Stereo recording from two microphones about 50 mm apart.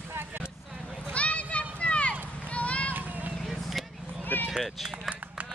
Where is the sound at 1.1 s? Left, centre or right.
Left.